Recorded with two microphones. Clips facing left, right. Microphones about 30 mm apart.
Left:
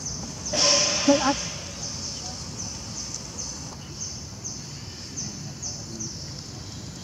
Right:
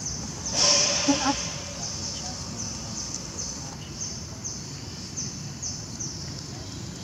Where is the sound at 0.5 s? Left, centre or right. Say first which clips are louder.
Left 1 dB; centre.